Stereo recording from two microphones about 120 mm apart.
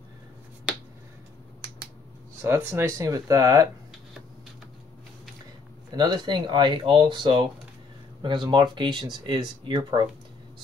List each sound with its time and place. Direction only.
0.7 s finger snapping: 10° right (ahead or behind)
2.4 s speech: 20° right (ahead or behind)
5.9 s speech: 35° right (ahead or behind)